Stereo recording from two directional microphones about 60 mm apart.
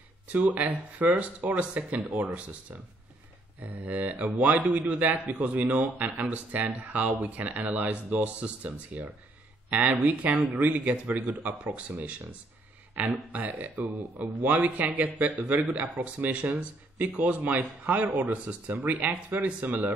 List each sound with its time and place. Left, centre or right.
0.4 s a man's voice: right